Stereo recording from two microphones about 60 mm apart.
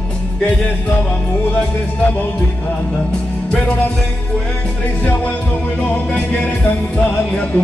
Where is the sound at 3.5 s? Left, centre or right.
Left.